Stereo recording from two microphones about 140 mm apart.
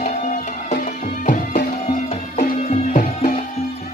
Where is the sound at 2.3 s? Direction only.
55° left (ahead or behind).